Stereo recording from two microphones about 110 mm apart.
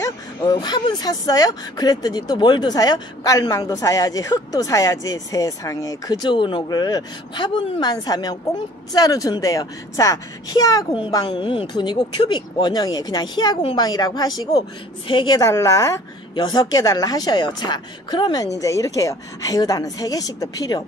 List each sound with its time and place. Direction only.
0.0 s speech: 30° left (ahead or behind)
16.3 s speech: 40° left (ahead or behind)